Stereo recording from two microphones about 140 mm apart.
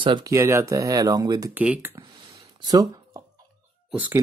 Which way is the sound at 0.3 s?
20° right (ahead or behind).